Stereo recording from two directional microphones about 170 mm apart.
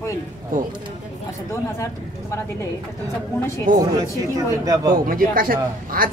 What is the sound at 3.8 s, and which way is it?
A man's voice, 20° right (ahead or behind).